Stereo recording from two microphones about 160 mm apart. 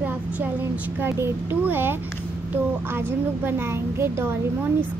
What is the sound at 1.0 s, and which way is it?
A child's voice, 15° right (ahead or behind).